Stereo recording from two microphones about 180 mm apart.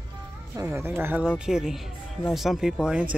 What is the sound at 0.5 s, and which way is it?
Speech, 15° right (ahead or behind).